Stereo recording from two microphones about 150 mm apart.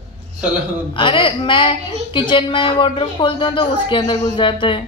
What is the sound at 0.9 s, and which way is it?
Speech, 35° left (ahead or behind).